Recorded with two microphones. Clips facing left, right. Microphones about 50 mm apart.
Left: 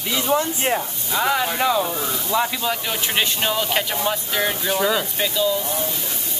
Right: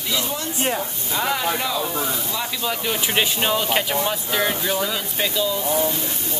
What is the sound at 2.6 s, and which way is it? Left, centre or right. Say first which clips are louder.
Speech: even; centre.